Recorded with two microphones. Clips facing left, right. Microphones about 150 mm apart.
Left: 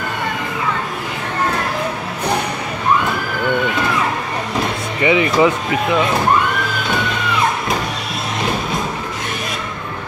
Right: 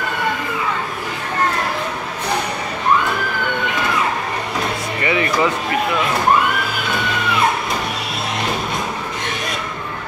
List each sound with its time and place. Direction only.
5.0 s speech: 15° left (ahead or behind)